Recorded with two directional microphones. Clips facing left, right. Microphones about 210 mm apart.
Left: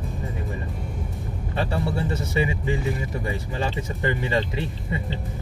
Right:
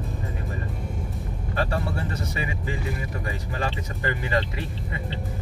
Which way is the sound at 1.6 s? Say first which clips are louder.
Left 2 dB; 25° left (ahead or behind).